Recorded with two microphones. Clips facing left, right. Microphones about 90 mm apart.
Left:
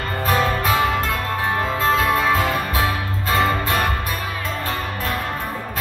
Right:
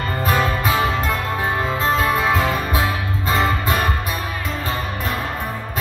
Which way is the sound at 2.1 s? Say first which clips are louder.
Even; 15° right (ahead or behind).